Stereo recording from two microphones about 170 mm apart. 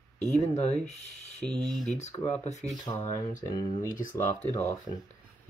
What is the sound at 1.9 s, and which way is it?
Speech, 40° left (ahead or behind).